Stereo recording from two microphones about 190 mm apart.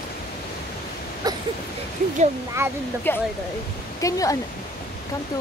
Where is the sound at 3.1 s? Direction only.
10° left (ahead or behind).